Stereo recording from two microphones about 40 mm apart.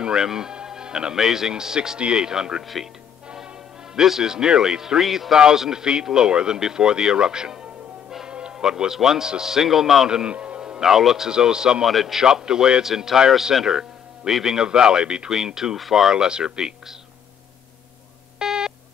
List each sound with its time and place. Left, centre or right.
0.0 s music: centre
1.1 s speech: centre
2.6 s speech: centre
4.0 s speech: centre
5.0 s speech: centre
5.3 s speech: centre
10.0 s a man's voice: centre
10.3 s music: right
10.6 s a man's voice: centre
11.8 s a man's voice: centre
18.4 s beep: centre